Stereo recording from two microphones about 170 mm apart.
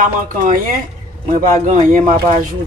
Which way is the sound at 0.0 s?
50° right (ahead or behind).